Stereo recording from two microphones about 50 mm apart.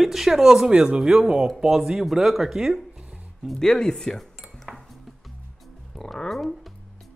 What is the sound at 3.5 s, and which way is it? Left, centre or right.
Cutlery, centre.